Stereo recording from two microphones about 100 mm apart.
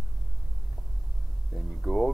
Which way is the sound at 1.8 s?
5° left (ahead or behind).